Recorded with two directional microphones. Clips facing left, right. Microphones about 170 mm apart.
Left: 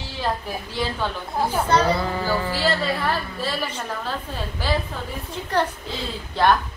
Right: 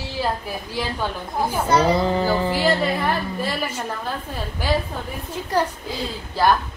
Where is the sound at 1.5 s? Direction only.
10° right (ahead or behind).